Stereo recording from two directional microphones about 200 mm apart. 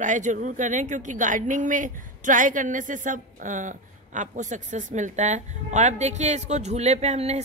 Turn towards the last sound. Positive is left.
turn(degrees=-35)  # may be behind; listen again after turning